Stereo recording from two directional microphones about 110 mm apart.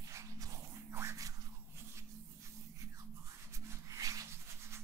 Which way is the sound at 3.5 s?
30° right (ahead or behind).